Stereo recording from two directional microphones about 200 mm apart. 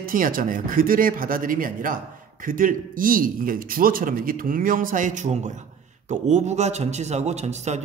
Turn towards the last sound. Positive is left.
turn(degrees=-35)  # may be behind; listen again after turning